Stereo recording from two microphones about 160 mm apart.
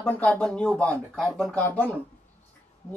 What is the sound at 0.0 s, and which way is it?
Speech, 10° left (ahead or behind).